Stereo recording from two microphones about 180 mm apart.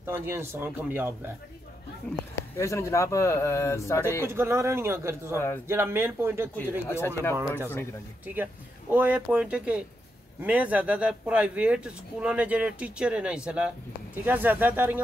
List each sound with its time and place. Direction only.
0.0 s speech: 15° right (ahead or behind)
2.0 s speech: 15° left (ahead or behind)
4.2 s speech: 15° right (ahead or behind)
6.9 s speech: 15° left (ahead or behind)
7.4 s speech: 10° right (ahead or behind)
8.9 s speech: 10° right (ahead or behind)